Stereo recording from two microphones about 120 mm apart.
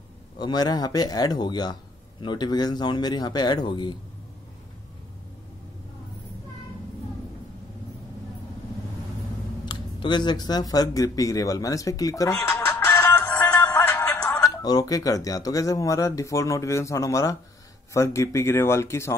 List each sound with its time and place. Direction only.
0.4 s speech: 35° left (ahead or behind)
9.7 s speech: 40° left (ahead or behind); by 13.2 s 15° left (ahead or behind)
13.2 s music: 30° left (ahead or behind)
13.5 s music: 15° left (ahead or behind)
14.4 s speech: 30° left (ahead or behind)